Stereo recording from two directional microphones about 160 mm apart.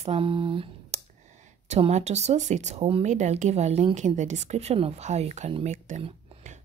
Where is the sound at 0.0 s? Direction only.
35° right (ahead or behind).